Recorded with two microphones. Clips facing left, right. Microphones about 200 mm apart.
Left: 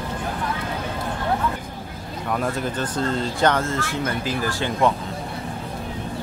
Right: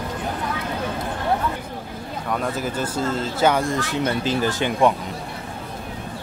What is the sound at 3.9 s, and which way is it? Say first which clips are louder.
Speech: right 3 dB; 25° right (ahead or behind).